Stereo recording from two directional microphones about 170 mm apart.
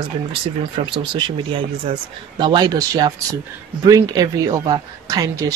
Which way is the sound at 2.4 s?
25° right (ahead or behind).